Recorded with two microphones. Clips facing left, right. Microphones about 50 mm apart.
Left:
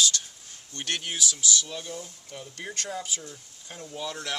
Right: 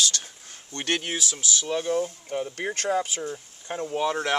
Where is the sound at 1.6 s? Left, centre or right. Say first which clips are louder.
Right 12 dB; right.